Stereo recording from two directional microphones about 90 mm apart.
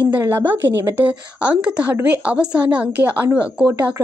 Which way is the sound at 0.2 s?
25° right (ahead or behind).